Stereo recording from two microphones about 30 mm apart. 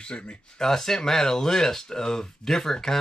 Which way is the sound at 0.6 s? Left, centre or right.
Centre.